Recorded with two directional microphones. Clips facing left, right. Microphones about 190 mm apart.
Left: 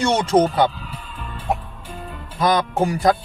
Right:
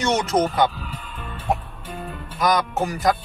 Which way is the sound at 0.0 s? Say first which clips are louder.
Left 4 dB; 30° left (ahead or behind).